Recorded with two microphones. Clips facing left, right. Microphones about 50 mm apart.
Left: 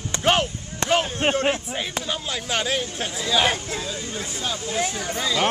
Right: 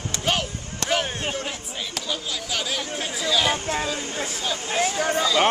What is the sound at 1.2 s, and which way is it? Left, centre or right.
Speech, left.